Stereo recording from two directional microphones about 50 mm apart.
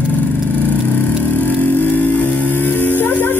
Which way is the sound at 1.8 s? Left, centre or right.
Left.